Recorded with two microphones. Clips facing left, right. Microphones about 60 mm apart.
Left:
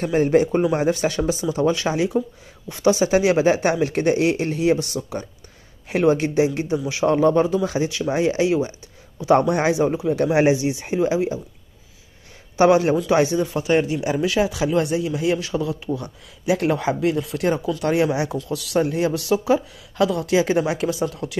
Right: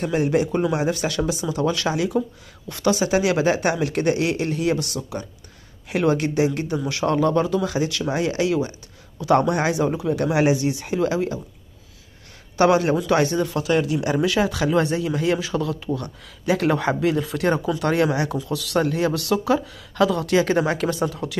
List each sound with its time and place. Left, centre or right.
0.0 s speech: left; by 11.3 s centre
12.5 s speech: left
13.7 s speech: left
14.2 s a man's voice: centre
18.1 s speech: centre
18.4 s a man's voice: centre